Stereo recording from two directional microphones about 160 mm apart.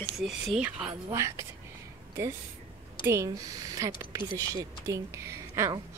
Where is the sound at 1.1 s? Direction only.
20° right (ahead or behind).